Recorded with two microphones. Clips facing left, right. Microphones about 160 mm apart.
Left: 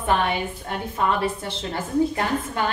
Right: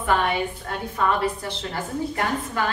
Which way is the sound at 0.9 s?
25° left (ahead or behind).